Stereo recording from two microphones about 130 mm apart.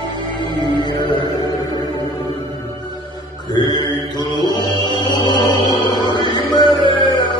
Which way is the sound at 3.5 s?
30° left (ahead or behind).